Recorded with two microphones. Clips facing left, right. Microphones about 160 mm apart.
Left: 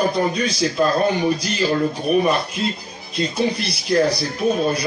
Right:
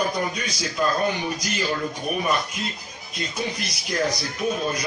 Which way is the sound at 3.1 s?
30° left (ahead or behind).